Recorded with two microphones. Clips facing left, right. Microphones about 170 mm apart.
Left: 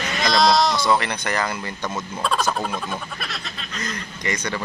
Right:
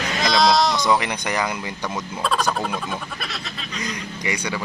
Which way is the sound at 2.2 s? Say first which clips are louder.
Even; centre (ahead or behind).